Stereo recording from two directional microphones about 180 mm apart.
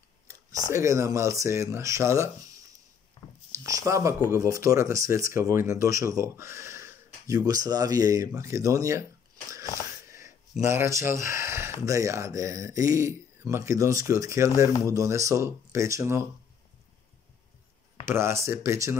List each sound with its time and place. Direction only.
0.3 s speech: 15° right (ahead or behind)
3.5 s speech: 20° right (ahead or behind)
10.6 s speech: 15° right (ahead or behind)
18.0 s speech: 15° right (ahead or behind)